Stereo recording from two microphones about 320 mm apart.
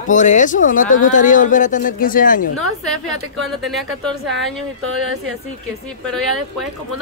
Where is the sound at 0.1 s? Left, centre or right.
Left.